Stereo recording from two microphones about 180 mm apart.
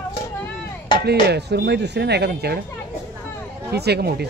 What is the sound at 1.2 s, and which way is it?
Speech, 65° right (ahead or behind).